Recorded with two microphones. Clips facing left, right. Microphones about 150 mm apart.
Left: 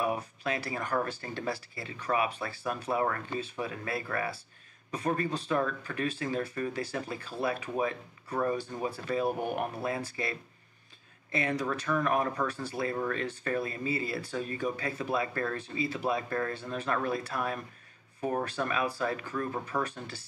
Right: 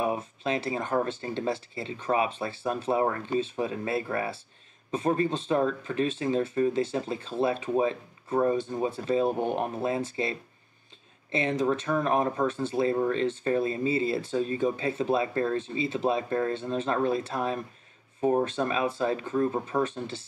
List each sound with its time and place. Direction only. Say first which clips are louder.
0.0 s speech: right 3 dB; 25° right (ahead or behind)
11.3 s speech: right 5 dB; 25° right (ahead or behind)